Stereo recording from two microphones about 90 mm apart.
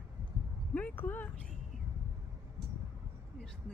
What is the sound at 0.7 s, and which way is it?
Speech, 20° left (ahead or behind).